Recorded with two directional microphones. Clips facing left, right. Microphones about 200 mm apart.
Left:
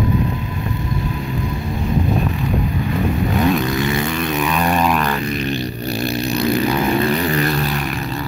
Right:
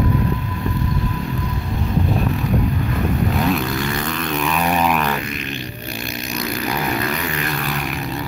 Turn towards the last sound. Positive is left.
turn(degrees=35)  # may be behind; listen again after turning